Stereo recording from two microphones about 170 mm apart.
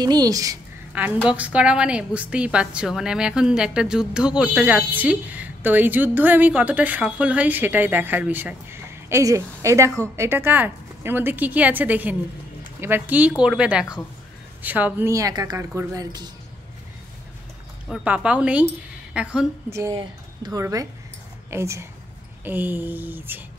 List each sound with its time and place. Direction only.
0.0 s a woman's voice: 20° right (ahead or behind)
0.9 s a woman's voice: 10° right (ahead or behind)
17.8 s a woman's voice: 5° right (ahead or behind)
19.7 s a woman's voice: 20° right (ahead or behind)